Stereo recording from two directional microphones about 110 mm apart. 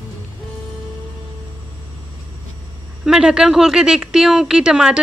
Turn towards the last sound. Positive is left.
turn(degrees=-5)  # may be behind; listen again after turning